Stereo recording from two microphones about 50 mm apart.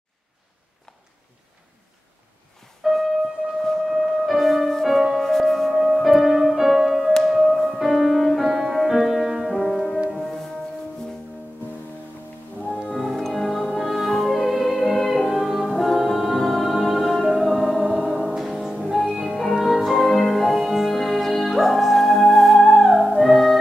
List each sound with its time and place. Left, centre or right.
2.8 s music: centre
4.9 s music: centre
5.2 s music: centre
12.9 s music: centre